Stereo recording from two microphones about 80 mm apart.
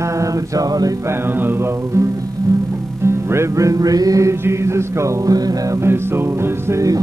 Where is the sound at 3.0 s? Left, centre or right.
Right.